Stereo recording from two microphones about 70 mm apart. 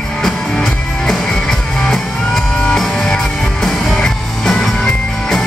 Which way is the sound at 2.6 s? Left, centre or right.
Centre.